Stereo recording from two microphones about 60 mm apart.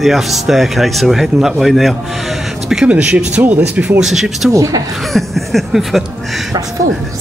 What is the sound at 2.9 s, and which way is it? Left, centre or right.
Speech, centre.